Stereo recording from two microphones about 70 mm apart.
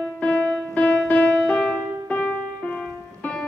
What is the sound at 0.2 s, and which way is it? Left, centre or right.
Music, centre.